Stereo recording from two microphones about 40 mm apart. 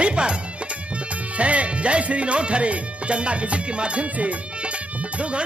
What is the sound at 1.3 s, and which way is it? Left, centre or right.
Speech, right.